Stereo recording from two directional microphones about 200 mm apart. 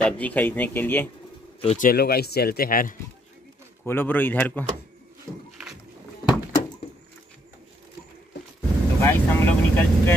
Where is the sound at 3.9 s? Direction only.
10° left (ahead or behind).